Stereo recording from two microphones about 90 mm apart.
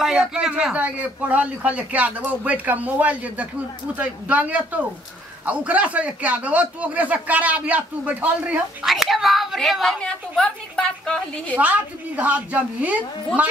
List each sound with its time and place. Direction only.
0.0 s speech: 5° right (ahead or behind)
8.8 s a woman's voice: centre (ahead or behind)
11.5 s speech: 15° right (ahead or behind)